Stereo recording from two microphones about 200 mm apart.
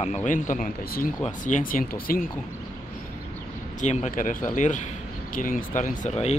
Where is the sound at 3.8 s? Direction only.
35° left (ahead or behind).